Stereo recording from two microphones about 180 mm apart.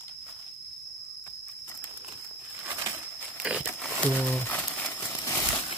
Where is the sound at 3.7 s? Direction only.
5° left (ahead or behind).